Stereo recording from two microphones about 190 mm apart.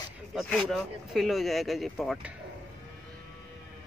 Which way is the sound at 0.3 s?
Centre (ahead or behind).